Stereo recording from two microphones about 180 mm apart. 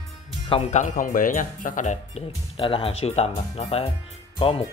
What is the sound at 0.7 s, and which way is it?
Speech, 45° left (ahead or behind).